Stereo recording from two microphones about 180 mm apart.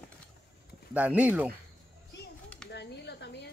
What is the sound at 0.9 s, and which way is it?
Speech, 10° right (ahead or behind).